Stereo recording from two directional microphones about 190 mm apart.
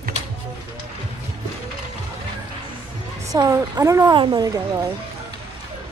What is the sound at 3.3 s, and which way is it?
Speech, 20° right (ahead or behind).